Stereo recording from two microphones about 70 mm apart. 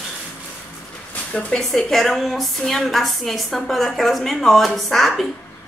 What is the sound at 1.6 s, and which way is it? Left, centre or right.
A woman's voice, centre.